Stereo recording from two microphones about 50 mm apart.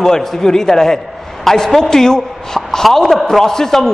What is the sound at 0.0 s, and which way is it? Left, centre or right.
A man's voice, centre.